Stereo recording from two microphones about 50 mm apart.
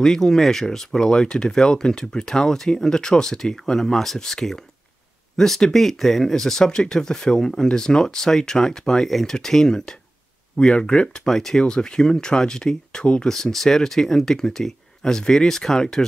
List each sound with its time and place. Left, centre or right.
0.0 s speech: centre
11.2 s speech: centre
13.3 s speech: centre